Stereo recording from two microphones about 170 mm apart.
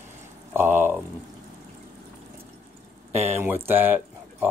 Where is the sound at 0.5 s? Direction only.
10° right (ahead or behind).